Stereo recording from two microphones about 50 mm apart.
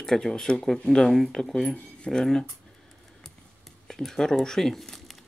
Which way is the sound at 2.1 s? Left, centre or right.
Centre.